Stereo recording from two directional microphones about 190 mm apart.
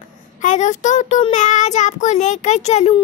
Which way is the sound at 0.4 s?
40° left (ahead or behind).